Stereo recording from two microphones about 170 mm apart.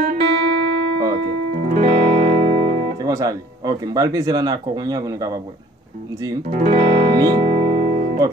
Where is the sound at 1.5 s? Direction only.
45° right (ahead or behind).